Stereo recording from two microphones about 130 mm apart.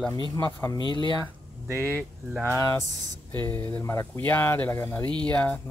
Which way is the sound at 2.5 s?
25° left (ahead or behind).